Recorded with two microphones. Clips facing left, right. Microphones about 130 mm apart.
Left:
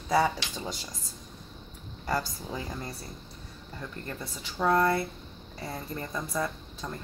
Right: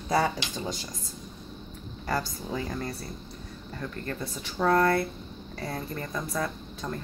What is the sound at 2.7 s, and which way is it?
Speech, 15° left (ahead or behind).